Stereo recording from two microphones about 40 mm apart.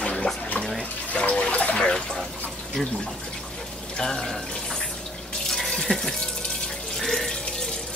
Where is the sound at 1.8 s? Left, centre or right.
Centre.